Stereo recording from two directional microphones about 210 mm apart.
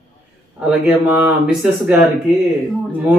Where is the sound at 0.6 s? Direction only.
5° right (ahead or behind).